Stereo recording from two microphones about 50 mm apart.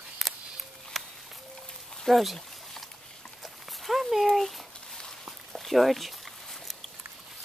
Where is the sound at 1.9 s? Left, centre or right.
Centre.